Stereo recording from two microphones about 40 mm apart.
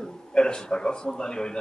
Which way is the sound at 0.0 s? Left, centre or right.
Left.